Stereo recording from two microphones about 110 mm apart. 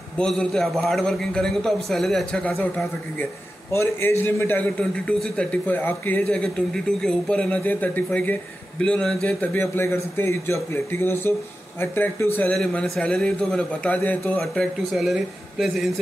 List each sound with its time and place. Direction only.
0.2 s a man's voice: 5° left (ahead or behind)
3.7 s a man's voice: 25° left (ahead or behind)
12.5 s a man's voice: centre (ahead or behind)
14.4 s a man's voice: 5° left (ahead or behind)